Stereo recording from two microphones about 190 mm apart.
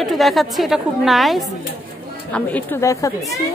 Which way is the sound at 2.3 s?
10° left (ahead or behind).